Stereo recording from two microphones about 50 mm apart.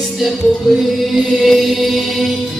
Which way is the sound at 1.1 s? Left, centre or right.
Centre.